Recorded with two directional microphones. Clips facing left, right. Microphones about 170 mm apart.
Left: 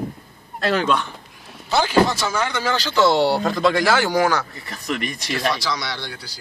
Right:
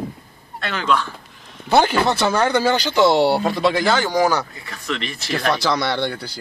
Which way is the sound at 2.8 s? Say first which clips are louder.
Left 2 dB; 15° right (ahead or behind).